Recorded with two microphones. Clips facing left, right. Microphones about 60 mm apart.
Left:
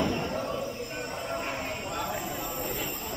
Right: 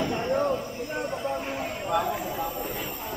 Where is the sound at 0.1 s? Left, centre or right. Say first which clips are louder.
Right 6 dB; right.